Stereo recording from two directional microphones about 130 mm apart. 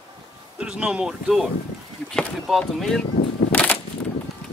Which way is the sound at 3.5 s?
10° left (ahead or behind).